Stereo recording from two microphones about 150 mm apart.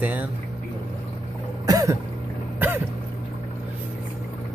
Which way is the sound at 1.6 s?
20° right (ahead or behind).